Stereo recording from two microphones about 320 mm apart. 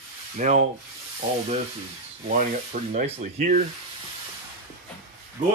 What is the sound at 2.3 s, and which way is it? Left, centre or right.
Rub, right.